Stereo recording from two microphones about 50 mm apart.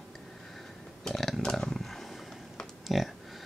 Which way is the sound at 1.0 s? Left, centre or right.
Centre.